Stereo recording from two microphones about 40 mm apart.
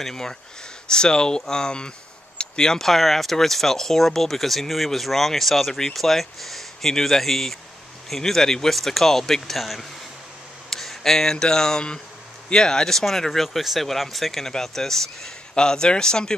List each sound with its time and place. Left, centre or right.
0.0 s speech: centre
2.3 s a sound: centre
2.9 s speech: centre
10.7 s speech: centre
15.5 s speech: centre